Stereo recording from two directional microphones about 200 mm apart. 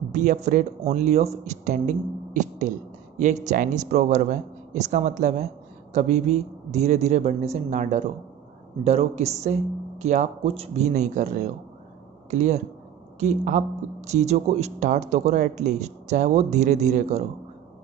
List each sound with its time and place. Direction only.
0.1 s speech: 40° right (ahead or behind)